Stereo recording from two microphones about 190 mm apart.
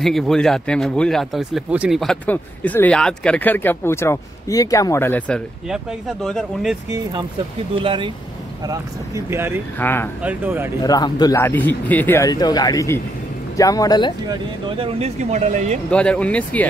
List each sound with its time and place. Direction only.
0.0 s speech: centre (ahead or behind)
5.7 s speech: centre (ahead or behind)
7.7 s speech: 25° right (ahead or behind)
8.6 s speech: 15° right (ahead or behind)
9.8 s speech: 10° left (ahead or behind)
10.2 s speech: 10° right (ahead or behind)
10.8 s speech: 20° left (ahead or behind)
14.3 s speech: 30° right (ahead or behind)
15.9 s speech: 5° left (ahead or behind)